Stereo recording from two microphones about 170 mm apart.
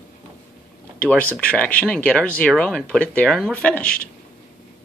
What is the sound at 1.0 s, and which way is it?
Speech, 5° left (ahead or behind).